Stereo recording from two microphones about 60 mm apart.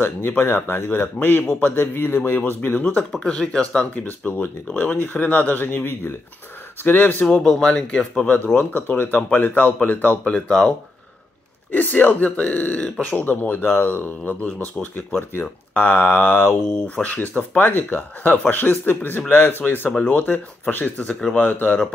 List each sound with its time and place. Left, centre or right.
0.0 s speech: left
3.3 s speech: centre; by 7.2 s left
7.4 s speech: centre
8.3 s speech: left
11.7 s speech: left